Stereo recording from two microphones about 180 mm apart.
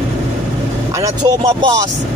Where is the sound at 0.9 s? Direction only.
20° right (ahead or behind).